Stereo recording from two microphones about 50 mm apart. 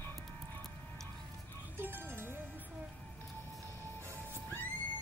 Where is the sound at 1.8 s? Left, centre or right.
Right.